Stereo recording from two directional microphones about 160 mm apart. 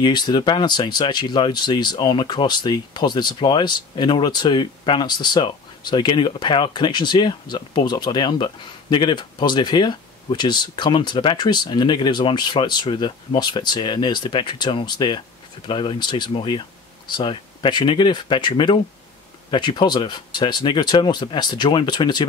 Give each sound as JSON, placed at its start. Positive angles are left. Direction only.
{"t": 0.0, "sound": "speech", "side_deg": 25}